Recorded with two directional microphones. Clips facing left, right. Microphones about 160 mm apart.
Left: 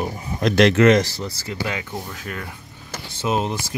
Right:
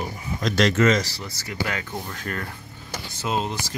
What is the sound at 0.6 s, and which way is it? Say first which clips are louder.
Speech: left 5 dB; 65° left (ahead or behind).